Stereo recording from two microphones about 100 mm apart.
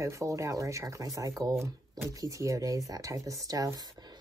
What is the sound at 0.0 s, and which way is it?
Speech, 30° right (ahead or behind).